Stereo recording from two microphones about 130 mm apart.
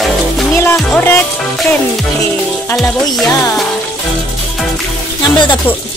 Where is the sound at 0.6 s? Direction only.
15° left (ahead or behind).